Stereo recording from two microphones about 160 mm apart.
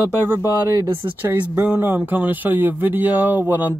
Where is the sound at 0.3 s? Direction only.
15° right (ahead or behind).